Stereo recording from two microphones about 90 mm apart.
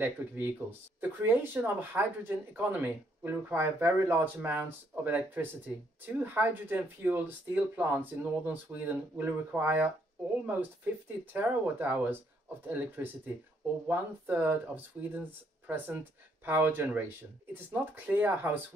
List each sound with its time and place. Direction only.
0.0 s speech: 25° right (ahead or behind)